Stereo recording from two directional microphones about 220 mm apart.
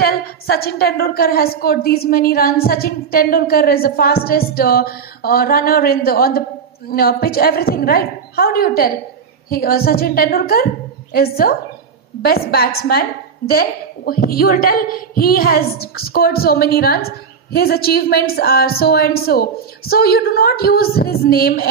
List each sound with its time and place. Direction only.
0.0 s a woman's voice: 45° left (ahead or behind)